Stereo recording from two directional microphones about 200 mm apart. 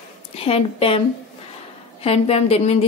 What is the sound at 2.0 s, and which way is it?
Speech, 30° left (ahead or behind).